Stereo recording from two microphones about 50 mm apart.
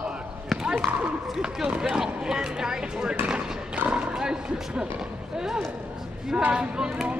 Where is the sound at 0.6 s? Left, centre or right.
Centre.